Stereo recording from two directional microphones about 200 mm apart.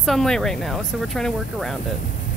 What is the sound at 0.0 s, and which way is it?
Speech, centre (ahead or behind).